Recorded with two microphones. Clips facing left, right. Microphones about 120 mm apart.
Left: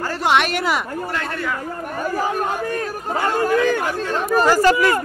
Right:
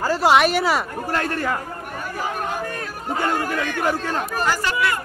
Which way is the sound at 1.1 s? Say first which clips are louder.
Right 5 dB; 45° right (ahead or behind).